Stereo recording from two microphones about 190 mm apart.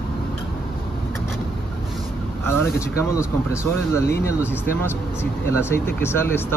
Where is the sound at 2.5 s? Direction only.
15° left (ahead or behind).